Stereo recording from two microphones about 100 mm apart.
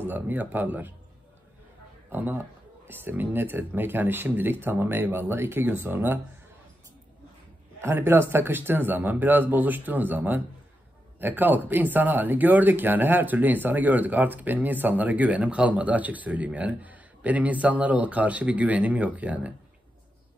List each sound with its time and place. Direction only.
0.0 s speech: 20° right (ahead or behind)
2.0 s speech: 20° right (ahead or behind)
7.8 s speech: 20° right (ahead or behind)